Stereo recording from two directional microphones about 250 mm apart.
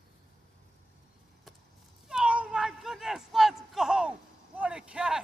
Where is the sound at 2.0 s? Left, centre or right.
Centre.